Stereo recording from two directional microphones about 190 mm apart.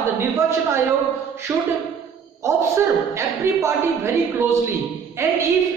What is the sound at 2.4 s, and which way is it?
Speech, 15° right (ahead or behind).